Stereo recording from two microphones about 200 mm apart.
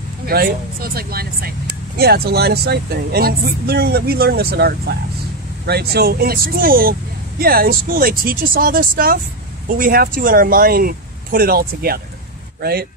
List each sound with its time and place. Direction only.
0.3 s speech: 50° right (ahead or behind)